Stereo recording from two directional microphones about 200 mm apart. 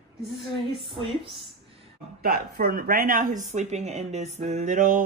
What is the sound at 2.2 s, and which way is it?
Speech, 50° right (ahead or behind).